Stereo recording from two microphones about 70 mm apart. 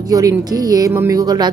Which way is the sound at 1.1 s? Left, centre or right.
Right.